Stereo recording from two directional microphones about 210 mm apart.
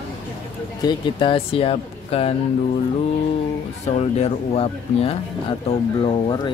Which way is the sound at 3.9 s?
30° left (ahead or behind).